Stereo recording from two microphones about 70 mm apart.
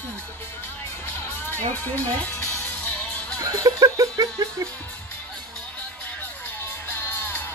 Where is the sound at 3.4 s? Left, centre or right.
Right.